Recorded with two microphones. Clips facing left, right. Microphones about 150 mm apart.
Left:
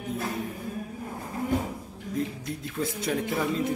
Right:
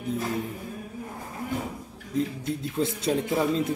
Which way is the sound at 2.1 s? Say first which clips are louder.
Right 4 dB; 25° right (ahead or behind).